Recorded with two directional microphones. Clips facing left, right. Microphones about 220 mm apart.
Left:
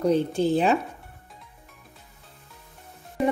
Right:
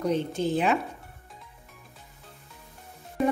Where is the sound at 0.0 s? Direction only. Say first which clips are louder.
Left 5 dB; 30° left (ahead or behind).